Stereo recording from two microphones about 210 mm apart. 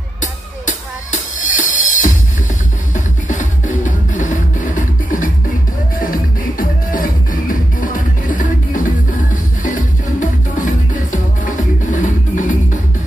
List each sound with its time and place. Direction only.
0.2 s music: 35° left (ahead or behind)
6.6 s music: 40° left (ahead or behind)